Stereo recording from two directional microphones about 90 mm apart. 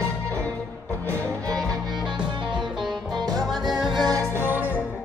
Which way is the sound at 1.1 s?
40° right (ahead or behind).